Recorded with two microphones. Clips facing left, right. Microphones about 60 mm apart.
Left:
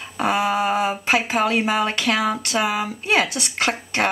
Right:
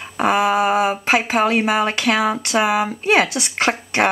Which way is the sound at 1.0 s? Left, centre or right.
Right.